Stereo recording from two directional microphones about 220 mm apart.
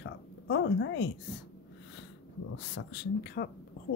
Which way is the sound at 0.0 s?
50° left (ahead or behind).